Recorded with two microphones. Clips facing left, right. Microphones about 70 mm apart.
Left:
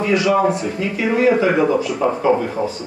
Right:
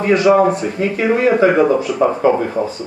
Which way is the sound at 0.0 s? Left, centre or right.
Right.